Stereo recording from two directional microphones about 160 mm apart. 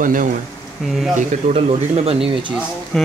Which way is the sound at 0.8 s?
Centre (ahead or behind).